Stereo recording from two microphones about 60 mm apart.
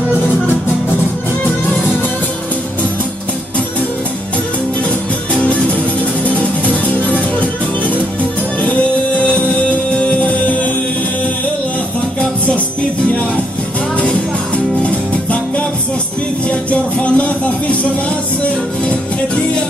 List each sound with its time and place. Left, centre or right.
6.2 s music: left
9.9 s music: left
13.9 s music: centre
16.4 s music: left